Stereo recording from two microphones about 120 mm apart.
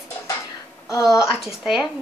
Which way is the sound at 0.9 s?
25° left (ahead or behind).